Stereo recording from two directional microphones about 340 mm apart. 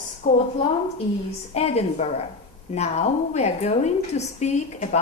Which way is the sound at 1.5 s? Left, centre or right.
Centre.